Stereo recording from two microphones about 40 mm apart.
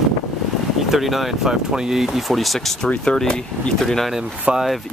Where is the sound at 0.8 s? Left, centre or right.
Centre.